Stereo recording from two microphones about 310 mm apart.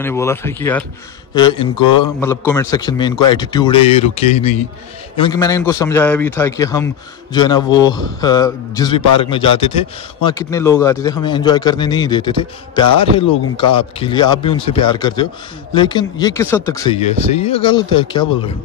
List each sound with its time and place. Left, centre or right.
0.0 s a man's voice: centre